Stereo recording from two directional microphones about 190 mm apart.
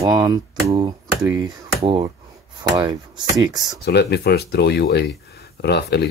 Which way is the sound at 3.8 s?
60° left (ahead or behind).